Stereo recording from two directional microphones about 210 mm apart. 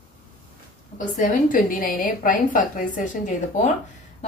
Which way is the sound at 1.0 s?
40° left (ahead or behind).